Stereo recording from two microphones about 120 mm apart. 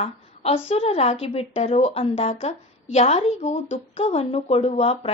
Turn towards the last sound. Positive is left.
turn(degrees=55)  # may be behind; listen again after turning